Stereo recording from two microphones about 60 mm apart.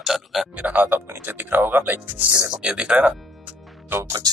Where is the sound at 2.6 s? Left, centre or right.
Centre.